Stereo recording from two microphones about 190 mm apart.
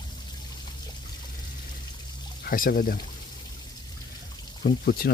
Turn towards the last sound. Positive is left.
turn(degrees=55)  # may be behind; listen again after turning